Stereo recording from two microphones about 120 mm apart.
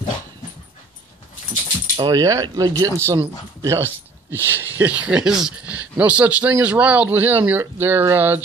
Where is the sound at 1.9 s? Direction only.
35° right (ahead or behind).